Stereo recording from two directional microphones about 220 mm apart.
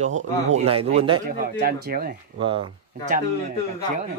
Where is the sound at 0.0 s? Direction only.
30° right (ahead or behind).